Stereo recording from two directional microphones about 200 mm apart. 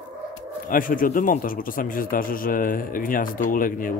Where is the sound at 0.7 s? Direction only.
45° left (ahead or behind).